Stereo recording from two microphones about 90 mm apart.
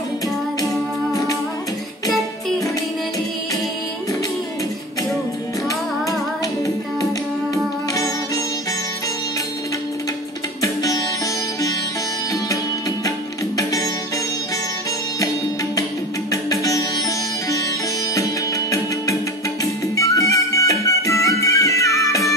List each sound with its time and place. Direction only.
1.1 s music: 40° left (ahead or behind)
6.4 s music: 40° left (ahead or behind)
10.6 s sitar: 40° left (ahead or behind)
13.6 s music: 40° left (ahead or behind)
16.3 s music: 40° left (ahead or behind)
18.1 s music: 40° left (ahead or behind)